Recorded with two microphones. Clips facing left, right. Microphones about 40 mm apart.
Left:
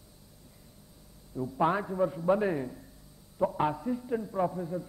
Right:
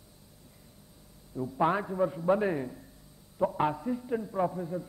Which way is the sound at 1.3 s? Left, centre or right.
Centre.